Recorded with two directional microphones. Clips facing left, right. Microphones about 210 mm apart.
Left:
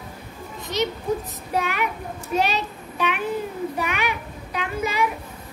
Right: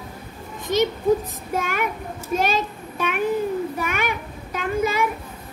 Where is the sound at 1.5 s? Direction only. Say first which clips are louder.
Even; 45° right (ahead or behind).